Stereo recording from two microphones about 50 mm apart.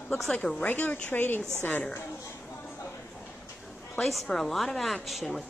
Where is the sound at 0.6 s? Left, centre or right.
Left.